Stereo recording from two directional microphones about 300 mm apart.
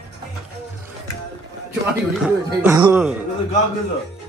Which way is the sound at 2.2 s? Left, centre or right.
Centre.